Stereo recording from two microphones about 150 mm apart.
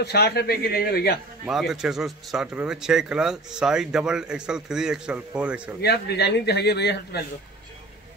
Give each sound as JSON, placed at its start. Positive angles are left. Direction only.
{"t": 0.0, "sound": "a man's voice", "side_deg": 90}
{"t": 1.5, "sound": "a man's voice", "side_deg": 0}
{"t": 5.8, "sound": "a man's voice", "side_deg": 90}